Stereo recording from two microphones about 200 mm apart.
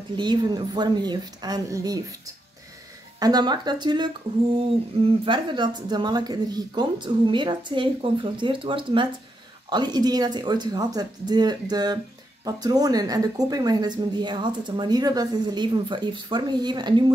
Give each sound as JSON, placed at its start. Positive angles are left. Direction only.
{"t": 0.1, "sound": "a woman's voice", "side_deg": -20}